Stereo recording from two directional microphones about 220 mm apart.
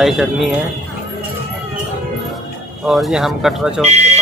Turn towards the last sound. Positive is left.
turn(degrees=-30)  # may be behind; listen again after turning